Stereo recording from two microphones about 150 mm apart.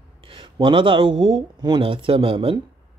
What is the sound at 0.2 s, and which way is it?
Speech, 35° right (ahead or behind).